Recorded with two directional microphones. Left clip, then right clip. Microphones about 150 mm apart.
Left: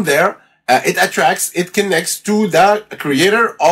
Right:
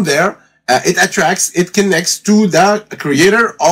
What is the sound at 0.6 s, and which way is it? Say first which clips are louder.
Speech: right 1 dB; 40° right (ahead or behind).